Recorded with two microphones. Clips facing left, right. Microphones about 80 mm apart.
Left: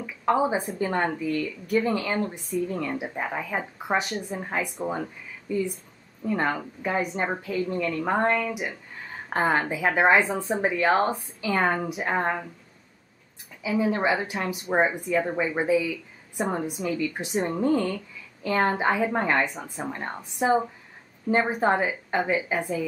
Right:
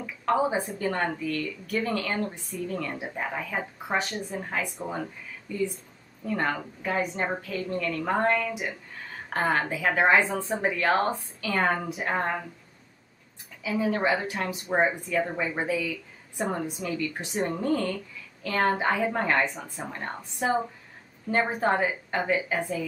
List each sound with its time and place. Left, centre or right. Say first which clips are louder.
0.0 s a woman's voice: left 2 dB; centre
13.6 s a woman's voice: left 2 dB; centre